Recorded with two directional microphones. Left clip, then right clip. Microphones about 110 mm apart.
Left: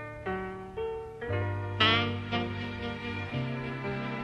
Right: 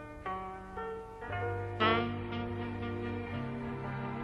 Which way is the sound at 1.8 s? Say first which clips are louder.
Left 5 dB; 25° left (ahead or behind).